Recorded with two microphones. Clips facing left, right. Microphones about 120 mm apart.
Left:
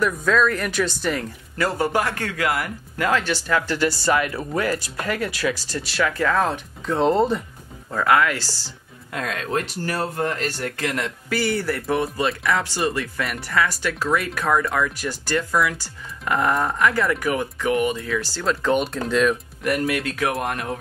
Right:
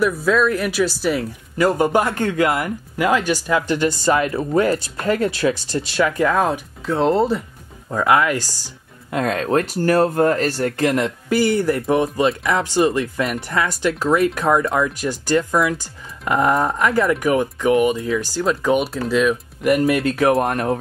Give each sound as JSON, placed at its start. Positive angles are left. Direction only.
{"t": 0.0, "sound": "speech", "side_deg": -5}
{"t": 1.6, "sound": "speech", "side_deg": -15}
{"t": 3.0, "sound": "speech", "side_deg": -15}
{"t": 6.9, "sound": "speech", "side_deg": 0}
{"t": 7.9, "sound": "speech", "side_deg": -15}
{"t": 9.1, "sound": "speech", "side_deg": -35}
{"t": 10.8, "sound": "speech", "side_deg": -30}
{"t": 19.8, "sound": "speech", "side_deg": -30}